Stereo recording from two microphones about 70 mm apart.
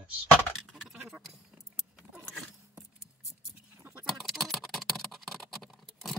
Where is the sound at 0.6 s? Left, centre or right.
Centre.